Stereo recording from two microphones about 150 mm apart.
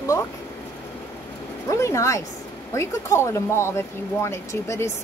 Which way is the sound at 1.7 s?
20° left (ahead or behind).